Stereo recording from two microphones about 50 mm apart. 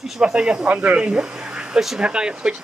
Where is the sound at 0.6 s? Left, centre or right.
Right.